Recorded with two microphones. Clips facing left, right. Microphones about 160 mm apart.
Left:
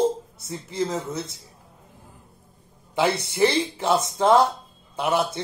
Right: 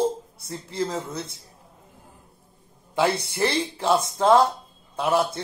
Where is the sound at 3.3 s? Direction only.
10° left (ahead or behind).